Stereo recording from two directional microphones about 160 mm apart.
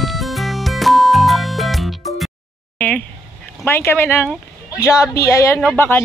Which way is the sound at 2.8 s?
10° left (ahead or behind).